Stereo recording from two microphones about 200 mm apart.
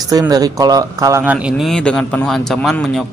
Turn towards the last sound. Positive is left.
turn(degrees=0)  # may be behind; listen again after turning